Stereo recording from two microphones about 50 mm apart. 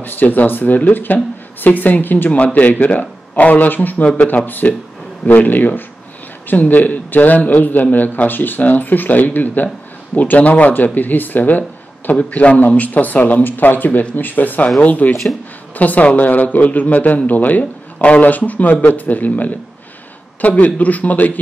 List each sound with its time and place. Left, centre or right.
0.0 s speech: left
4.0 s speech: left
4.5 s speech: left